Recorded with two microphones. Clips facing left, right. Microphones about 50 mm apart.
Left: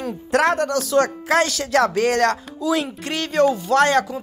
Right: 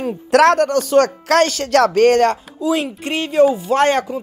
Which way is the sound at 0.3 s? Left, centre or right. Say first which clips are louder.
Right 6 dB; right.